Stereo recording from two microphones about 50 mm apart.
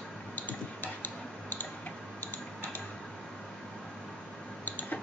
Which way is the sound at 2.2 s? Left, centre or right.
Left.